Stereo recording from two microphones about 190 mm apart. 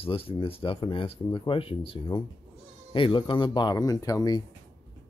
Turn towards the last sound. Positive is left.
turn(degrees=20)  # may be behind; listen again after turning